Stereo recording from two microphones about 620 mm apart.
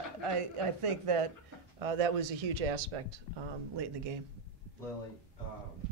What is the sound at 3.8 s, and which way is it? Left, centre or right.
Speech, right.